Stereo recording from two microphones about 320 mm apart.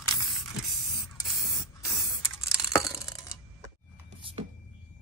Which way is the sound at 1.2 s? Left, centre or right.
Centre.